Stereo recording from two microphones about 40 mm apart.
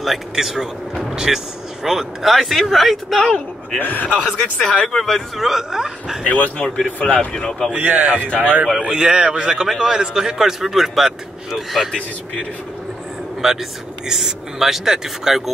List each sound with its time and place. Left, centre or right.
0.0 s a man's voice: centre
3.8 s speech: left
4.6 s speech: left
4.8 s a man's voice: centre
5.7 s speech: centre
6.2 s speech: left
7.3 s speech: centre
7.7 s speech: right
8.4 s a man's voice: right
8.8 s a man's voice: centre
13.4 s speech: centre